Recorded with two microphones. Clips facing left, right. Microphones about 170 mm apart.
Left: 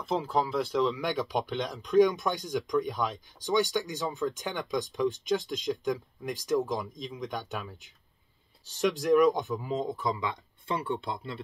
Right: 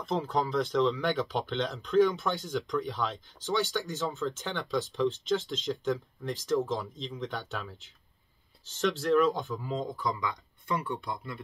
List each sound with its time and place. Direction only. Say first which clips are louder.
0.0 s speech: left 1 dB; 5° left (ahead or behind); by 11.4 s 25° left (ahead or behind)